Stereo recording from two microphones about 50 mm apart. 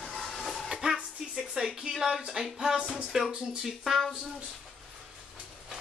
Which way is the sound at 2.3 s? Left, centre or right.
Centre.